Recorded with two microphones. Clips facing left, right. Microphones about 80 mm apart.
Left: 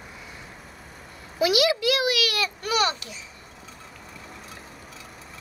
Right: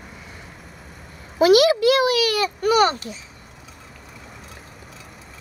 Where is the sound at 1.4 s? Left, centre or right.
Right.